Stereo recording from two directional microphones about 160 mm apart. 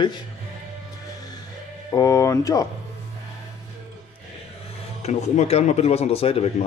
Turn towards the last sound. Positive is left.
turn(degrees=40)  # may be behind; listen again after turning